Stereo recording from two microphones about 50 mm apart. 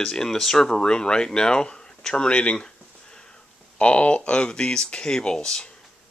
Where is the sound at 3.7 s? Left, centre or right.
Left.